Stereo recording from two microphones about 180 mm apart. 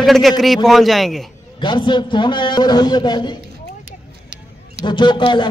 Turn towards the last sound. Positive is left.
turn(degrees=25)  # may be behind; listen again after turning